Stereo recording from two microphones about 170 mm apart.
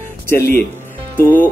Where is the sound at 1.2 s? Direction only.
10° left (ahead or behind).